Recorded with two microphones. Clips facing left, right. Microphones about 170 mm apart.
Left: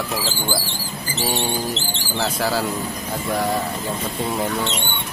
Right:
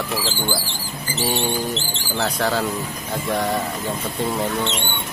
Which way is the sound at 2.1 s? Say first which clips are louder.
Even; centre (ahead or behind).